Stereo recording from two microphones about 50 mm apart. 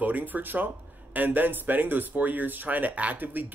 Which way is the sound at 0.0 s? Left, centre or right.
Right.